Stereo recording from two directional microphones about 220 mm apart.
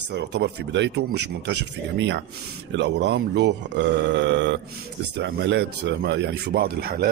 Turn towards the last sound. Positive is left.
turn(degrees=-40)  # may be behind; listen again after turning